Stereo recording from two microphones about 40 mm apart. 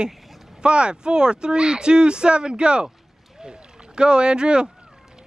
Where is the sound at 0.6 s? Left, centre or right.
Right.